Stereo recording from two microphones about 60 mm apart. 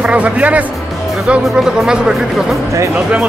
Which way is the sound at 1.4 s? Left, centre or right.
Centre.